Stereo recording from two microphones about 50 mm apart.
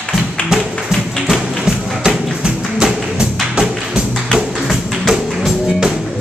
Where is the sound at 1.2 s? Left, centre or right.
Centre.